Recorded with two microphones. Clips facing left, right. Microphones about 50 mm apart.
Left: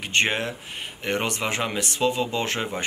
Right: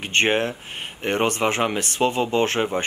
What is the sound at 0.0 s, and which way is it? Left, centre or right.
Speech, right.